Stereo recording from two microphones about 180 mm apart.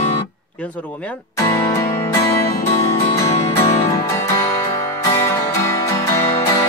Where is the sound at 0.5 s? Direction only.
10° left (ahead or behind).